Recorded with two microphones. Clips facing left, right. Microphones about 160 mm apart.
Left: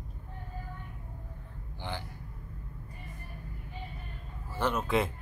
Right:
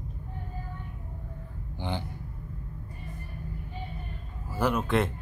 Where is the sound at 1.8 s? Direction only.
20° right (ahead or behind).